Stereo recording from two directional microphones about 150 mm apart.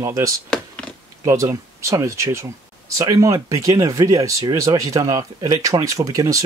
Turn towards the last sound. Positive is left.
turn(degrees=-20)  # may be behind; listen again after turning